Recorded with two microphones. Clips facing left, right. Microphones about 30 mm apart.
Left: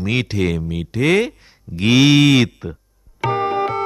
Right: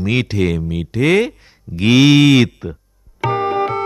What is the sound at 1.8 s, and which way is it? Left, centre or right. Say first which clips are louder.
Music: right 2 dB; centre.